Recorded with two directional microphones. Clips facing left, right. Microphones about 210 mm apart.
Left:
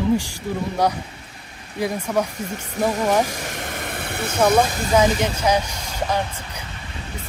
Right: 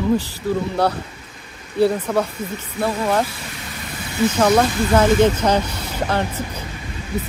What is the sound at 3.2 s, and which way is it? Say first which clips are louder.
Vehicle: left 3 dB; 45° left (ahead or behind).